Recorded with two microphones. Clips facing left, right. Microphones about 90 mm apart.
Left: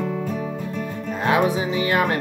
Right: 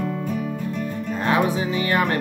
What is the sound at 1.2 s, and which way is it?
Music, 20° left (ahead or behind).